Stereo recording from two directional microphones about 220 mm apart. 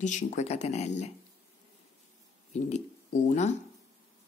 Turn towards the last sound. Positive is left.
turn(degrees=35)  # may be behind; listen again after turning